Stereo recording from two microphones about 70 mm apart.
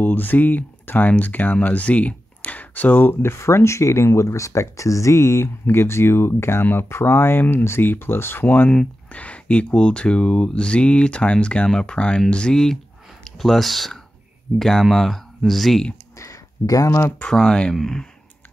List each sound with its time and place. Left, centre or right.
0.0 s speech: left
8.6 s speech: centre
16.2 s a sound: left
17.2 s speech: centre